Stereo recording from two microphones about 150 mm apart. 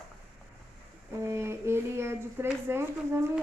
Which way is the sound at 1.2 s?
15° right (ahead or behind).